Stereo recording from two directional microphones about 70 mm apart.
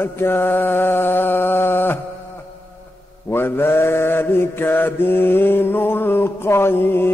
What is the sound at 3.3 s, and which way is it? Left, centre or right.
Mantra, left.